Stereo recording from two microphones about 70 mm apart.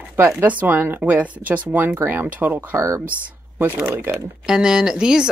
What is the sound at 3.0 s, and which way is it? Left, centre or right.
Speech, right.